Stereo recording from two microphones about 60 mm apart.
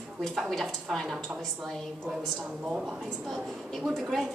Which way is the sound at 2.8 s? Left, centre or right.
Centre.